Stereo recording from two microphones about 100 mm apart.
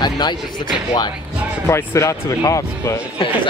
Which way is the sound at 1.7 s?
30° left (ahead or behind).